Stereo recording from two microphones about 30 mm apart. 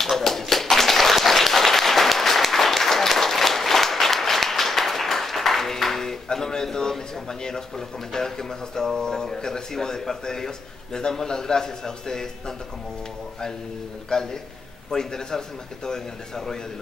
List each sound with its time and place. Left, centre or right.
0.0 s applause: centre
6.2 s a man's voice: centre
14.1 s speech: left